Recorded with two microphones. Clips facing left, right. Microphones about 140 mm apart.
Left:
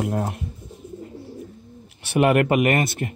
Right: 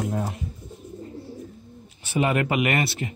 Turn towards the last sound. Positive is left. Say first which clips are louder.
# left 4 dB
turn(degrees=50)  # may be behind; listen again after turning